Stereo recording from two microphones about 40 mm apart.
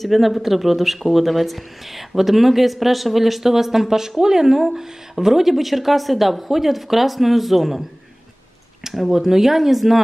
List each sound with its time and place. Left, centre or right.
0.0 s speech: centre
8.8 s speech: centre